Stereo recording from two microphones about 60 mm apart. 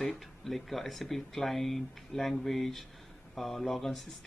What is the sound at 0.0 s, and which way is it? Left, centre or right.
Speech, centre.